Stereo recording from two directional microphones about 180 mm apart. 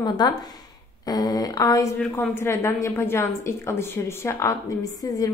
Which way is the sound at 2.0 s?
5° left (ahead or behind).